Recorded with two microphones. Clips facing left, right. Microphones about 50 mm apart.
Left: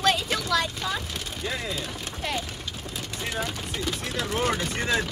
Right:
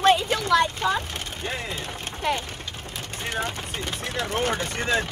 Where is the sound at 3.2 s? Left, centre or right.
Right.